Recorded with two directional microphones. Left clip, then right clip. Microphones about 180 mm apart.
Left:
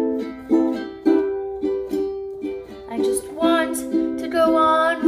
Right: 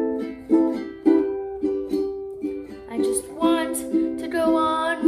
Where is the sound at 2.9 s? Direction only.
Centre (ahead or behind).